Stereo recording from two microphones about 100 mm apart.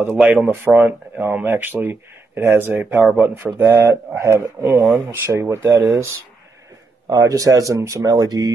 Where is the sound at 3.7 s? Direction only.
30° right (ahead or behind).